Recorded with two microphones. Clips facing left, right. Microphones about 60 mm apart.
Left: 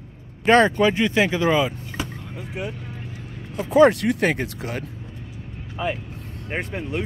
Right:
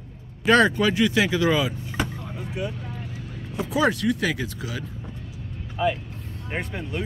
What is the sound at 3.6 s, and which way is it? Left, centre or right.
Speech, left.